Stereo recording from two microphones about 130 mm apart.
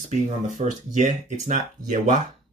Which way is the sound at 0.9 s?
65° right (ahead or behind).